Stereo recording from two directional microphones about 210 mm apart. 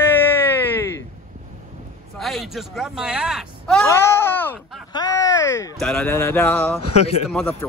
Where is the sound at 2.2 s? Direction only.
Centre (ahead or behind).